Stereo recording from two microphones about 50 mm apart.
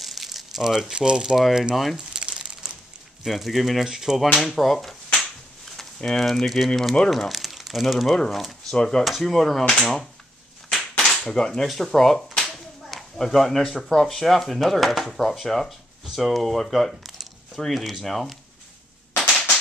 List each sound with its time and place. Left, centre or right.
0.0 s crumpling: centre
1.3 s speech: centre
2.0 s a sound: centre
3.3 s speech: centre
8.7 s speech: centre
9.0 s speech: centre
10.7 s a sound: centre
11.6 s speech: centre